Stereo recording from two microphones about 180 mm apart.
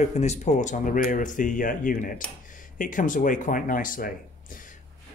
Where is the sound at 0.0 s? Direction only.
40° left (ahead or behind).